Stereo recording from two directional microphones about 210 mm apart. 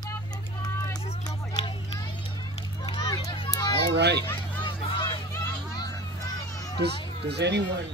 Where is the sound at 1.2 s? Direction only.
20° left (ahead or behind).